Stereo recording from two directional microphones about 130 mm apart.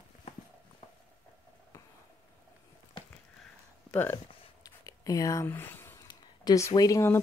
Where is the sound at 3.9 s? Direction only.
15° left (ahead or behind).